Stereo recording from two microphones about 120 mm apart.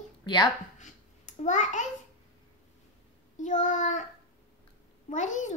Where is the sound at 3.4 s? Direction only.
90° left.